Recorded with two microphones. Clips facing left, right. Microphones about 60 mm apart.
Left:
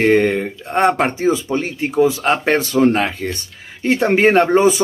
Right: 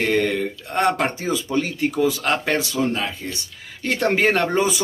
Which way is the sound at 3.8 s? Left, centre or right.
Left.